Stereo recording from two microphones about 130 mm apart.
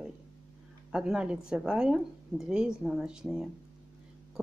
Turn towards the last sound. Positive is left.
turn(degrees=-5)  # may be behind; listen again after turning